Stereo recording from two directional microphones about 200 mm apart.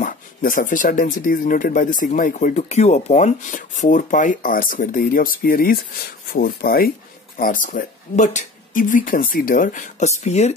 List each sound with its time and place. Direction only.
0.0 s speech: 45° left (ahead or behind)